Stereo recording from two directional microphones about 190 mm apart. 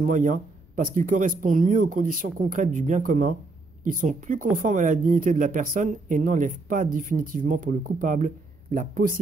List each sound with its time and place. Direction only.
0.0 s speech: 45° right (ahead or behind)